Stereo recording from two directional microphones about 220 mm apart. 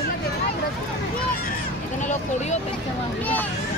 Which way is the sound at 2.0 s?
30° left (ahead or behind).